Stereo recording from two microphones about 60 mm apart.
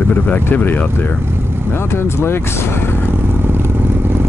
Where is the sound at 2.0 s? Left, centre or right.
Left.